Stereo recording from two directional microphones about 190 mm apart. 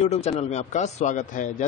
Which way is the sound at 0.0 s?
35° left (ahead or behind).